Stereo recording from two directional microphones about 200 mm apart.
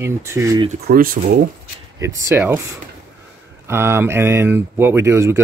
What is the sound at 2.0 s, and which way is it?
Speech, 15° right (ahead or behind).